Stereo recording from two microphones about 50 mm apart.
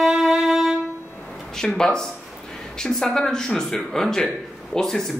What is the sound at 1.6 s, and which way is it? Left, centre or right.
A man's voice, centre.